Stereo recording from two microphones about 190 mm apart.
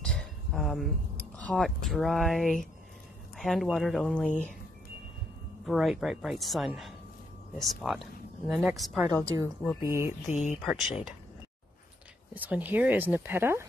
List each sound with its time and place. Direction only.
0.0 s speech: 5° left (ahead or behind)
5.7 s speech: centre (ahead or behind)
9.3 s speech: 20° right (ahead or behind)
10.2 s speech: 40° left (ahead or behind)
10.6 s speech: centre (ahead or behind)
12.4 s speech: 10° right (ahead or behind)